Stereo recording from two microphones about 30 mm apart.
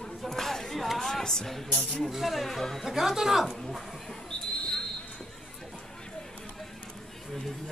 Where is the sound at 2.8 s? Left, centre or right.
Centre.